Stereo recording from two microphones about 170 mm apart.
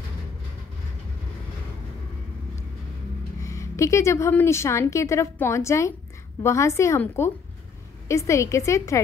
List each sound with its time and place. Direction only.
3.3 s a woman's voice: 20° left (ahead or behind)